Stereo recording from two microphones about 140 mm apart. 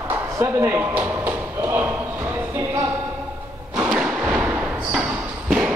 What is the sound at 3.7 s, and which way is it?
Thump, 10° right (ahead or behind).